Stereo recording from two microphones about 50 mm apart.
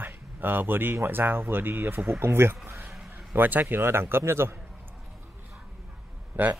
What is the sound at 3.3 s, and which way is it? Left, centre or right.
Speech, right.